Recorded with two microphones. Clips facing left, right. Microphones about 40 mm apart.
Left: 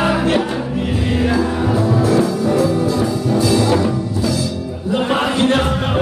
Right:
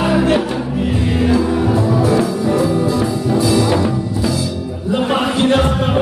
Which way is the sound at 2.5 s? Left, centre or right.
Centre.